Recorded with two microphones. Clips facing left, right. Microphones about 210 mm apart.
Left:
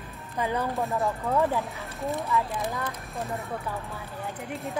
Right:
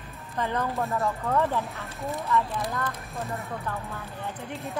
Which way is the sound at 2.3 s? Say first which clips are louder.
Right 1 dB; 15° left (ahead or behind).